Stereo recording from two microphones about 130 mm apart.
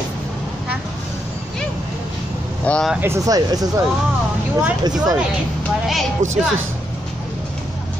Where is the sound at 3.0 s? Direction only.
25° right (ahead or behind).